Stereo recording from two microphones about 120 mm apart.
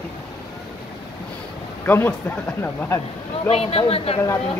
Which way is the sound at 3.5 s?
55° left (ahead or behind).